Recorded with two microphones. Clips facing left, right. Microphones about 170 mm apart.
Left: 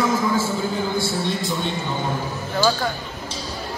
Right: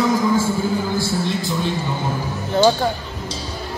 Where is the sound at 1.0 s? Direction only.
Centre (ahead or behind).